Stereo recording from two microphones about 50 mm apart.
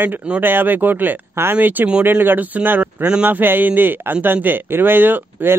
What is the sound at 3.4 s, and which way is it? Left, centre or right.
Speech, right.